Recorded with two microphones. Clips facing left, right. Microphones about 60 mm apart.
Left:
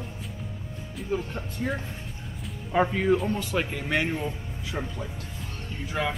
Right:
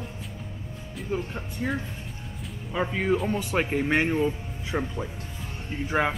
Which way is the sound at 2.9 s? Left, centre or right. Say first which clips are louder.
Left 1 dB; centre.